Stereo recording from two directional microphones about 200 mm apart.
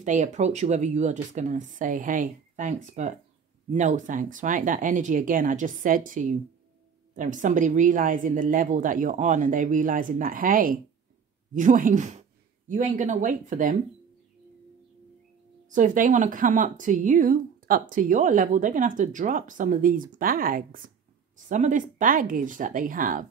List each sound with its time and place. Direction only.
0.0 s speech: 35° right (ahead or behind)
15.7 s speech: 40° right (ahead or behind)